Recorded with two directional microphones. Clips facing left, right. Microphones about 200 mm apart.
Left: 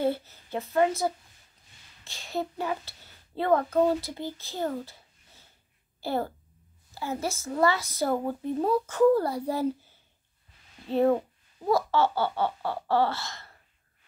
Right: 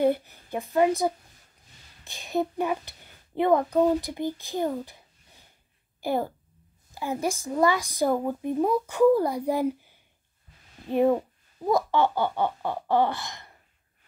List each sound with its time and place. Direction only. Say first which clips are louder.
0.0 s a child's voice: right 4 dB; 15° right (ahead or behind)